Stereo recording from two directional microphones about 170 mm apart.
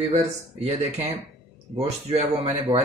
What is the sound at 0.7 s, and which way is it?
Speech, 40° right (ahead or behind).